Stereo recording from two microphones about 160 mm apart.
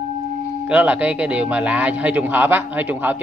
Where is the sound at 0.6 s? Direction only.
10° right (ahead or behind).